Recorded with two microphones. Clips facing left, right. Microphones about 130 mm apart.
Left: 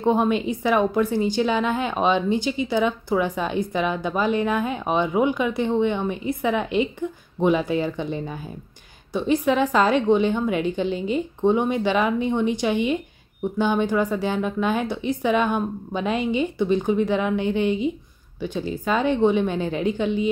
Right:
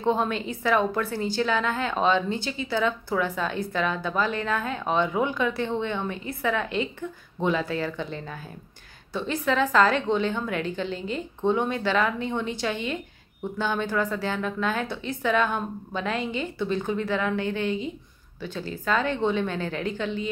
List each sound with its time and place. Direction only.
0.0 s a woman's voice: 15° left (ahead or behind)